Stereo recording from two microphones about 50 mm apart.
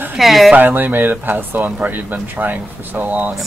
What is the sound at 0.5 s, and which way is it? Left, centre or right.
Speech, right.